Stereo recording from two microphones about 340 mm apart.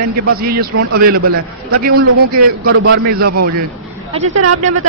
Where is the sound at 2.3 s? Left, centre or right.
Right.